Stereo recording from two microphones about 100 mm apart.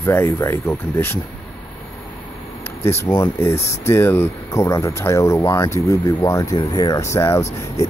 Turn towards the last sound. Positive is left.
turn(degrees=30)  # may be behind; listen again after turning